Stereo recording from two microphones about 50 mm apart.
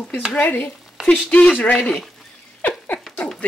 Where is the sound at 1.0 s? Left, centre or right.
Centre.